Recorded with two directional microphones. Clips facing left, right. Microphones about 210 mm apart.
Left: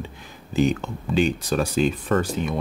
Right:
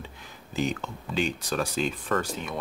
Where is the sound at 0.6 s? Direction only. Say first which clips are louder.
Left 8 dB; 15° left (ahead or behind).